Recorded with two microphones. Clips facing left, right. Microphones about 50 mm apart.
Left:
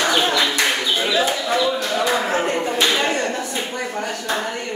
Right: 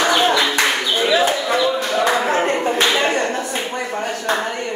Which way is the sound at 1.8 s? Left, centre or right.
Right.